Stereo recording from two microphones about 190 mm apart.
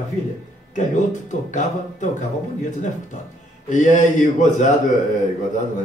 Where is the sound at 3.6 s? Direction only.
40° left (ahead or behind).